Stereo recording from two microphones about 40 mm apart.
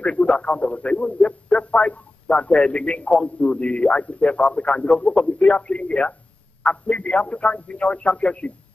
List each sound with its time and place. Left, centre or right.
0.0 s a man's voice: left